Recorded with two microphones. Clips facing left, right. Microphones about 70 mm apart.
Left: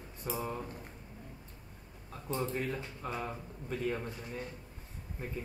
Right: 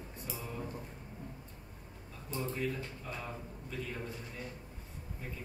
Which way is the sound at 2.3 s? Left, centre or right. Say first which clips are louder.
Left 1 dB; left.